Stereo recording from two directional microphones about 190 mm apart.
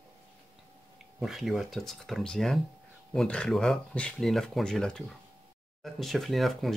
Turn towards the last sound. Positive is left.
turn(degrees=0)  # may be behind; listen again after turning